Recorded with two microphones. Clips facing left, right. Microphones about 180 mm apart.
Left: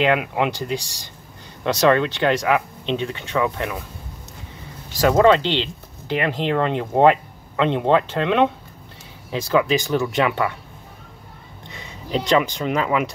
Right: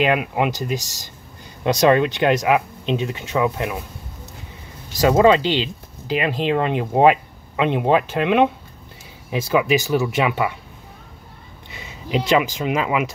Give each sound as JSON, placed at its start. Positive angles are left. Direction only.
{"t": 0.0, "sound": "speech", "side_deg": -10}
{"t": 1.6, "sound": "speech", "side_deg": -15}
{"t": 5.0, "sound": "speech", "side_deg": -15}
{"t": 12.1, "sound": "speech", "side_deg": -10}